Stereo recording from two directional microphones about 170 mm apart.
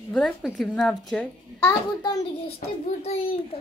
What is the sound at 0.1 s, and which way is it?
A woman's voice, 5° left (ahead or behind).